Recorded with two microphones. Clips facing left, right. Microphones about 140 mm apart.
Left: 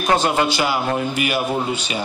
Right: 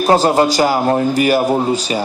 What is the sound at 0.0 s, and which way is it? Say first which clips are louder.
A man's voice: right 6 dB; 35° right (ahead or behind).